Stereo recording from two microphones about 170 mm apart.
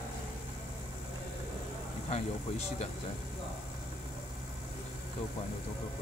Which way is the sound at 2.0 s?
40° left (ahead or behind).